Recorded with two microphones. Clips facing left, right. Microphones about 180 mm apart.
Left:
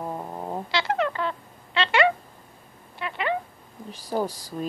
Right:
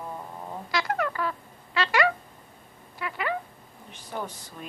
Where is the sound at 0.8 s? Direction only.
25° left (ahead or behind).